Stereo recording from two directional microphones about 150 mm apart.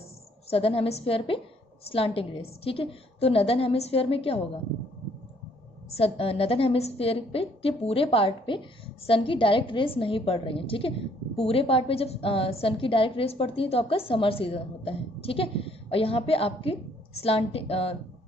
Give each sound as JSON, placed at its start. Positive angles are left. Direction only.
{"t": 0.5, "sound": "a woman's voice", "side_deg": 40}
{"t": 5.9, "sound": "a woman's voice", "side_deg": 40}